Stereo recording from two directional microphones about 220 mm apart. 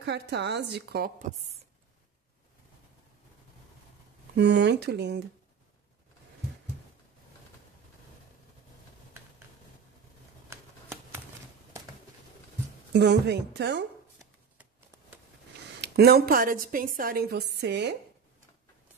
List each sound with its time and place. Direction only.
0.0 s a woman's voice: 50° right (ahead or behind)
4.4 s a woman's voice: 50° right (ahead or behind)
12.9 s a woman's voice: 50° right (ahead or behind)
15.8 s a woman's voice: 45° right (ahead or behind)